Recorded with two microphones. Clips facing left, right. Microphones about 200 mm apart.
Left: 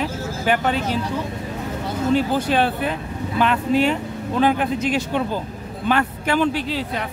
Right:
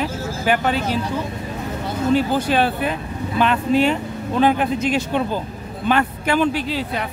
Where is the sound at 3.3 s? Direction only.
25° right (ahead or behind).